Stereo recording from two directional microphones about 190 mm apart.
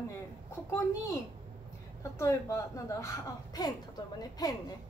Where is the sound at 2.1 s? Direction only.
15° left (ahead or behind).